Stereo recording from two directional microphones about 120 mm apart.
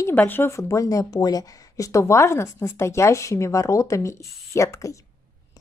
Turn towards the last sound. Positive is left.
turn(degrees=25)  # may be behind; listen again after turning